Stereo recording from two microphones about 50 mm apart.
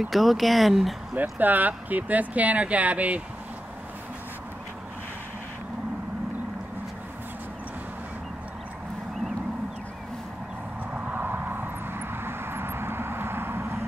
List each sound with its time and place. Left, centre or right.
0.0 s speech: centre
1.1 s speech: right
10.9 s vehicle: right